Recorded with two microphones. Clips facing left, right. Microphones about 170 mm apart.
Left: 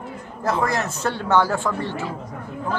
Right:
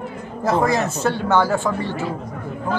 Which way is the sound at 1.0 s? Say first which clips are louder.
Right 1 dB; centre (ahead or behind).